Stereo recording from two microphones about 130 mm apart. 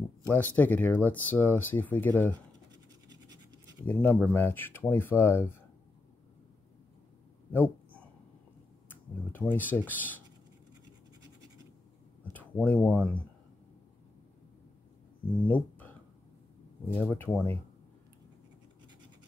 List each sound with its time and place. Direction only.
0.3 s speech: 15° left (ahead or behind)
3.8 s speech: 15° left (ahead or behind)
8.8 s speech: 15° left (ahead or behind)
12.6 s speech: 15° left (ahead or behind)
15.3 s speech: 15° left (ahead or behind)
16.9 s speech: 15° left (ahead or behind)